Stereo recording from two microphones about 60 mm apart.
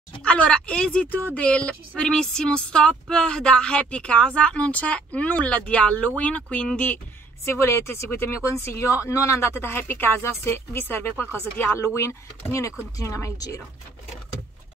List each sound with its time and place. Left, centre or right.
0.2 s a woman's voice: centre
1.1 s speech: left
7.4 s speech: left
9.6 s speech: left
11.9 s speech: left